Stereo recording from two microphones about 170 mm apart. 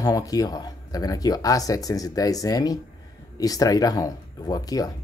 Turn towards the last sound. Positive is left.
turn(degrees=20)  # may be behind; listen again after turning